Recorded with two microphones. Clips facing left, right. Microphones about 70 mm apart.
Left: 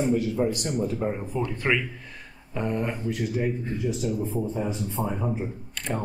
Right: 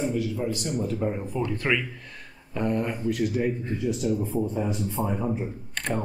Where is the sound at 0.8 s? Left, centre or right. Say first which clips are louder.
Even; centre.